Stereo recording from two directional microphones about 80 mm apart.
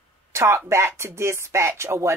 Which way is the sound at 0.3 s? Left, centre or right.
Right.